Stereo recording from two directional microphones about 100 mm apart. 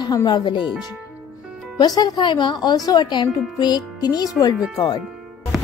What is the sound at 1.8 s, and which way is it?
Speech, 40° left (ahead or behind).